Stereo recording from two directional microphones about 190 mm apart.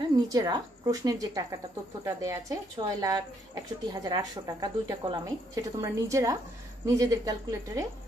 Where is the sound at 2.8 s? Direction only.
20° right (ahead or behind).